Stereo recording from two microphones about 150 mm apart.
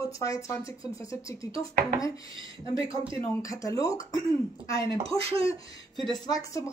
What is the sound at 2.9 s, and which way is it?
Speech, 20° left (ahead or behind).